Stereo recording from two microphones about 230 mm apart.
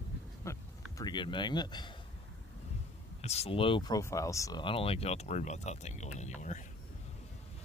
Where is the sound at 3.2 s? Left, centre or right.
Left.